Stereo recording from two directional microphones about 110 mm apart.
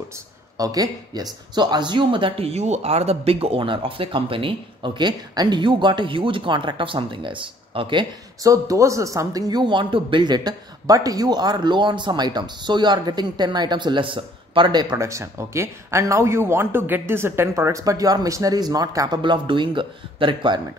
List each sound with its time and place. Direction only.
0.6 s speech: 35° right (ahead or behind)
8.4 s speech: 30° right (ahead or behind)
15.0 s speech: 25° right (ahead or behind); by 20.6 s 45° right (ahead or behind)